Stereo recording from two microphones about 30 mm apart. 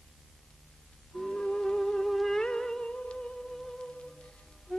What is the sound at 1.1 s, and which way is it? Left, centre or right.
Music, centre.